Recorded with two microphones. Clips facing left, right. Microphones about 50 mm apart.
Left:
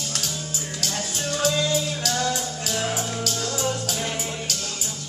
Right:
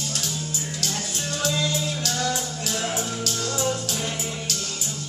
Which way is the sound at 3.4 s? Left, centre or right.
Left.